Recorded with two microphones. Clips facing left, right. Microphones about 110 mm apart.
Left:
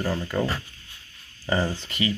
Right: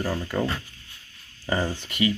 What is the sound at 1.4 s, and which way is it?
Speech, 10° left (ahead or behind).